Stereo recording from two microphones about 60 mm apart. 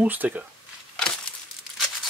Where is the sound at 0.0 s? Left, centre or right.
Right.